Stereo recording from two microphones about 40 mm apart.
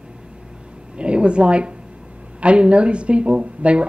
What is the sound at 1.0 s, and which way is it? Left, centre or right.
A woman's voice, right.